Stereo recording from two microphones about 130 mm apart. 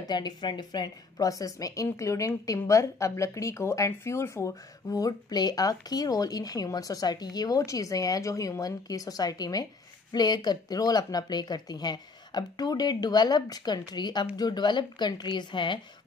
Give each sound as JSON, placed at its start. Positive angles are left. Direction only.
{"t": 0.0, "sound": "a woman's voice", "side_deg": 35}